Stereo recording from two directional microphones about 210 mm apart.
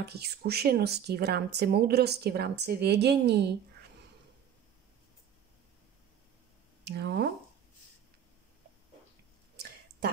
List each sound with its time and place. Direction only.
0.0 s speech: 50° right (ahead or behind)
6.8 s speech: 50° right (ahead or behind)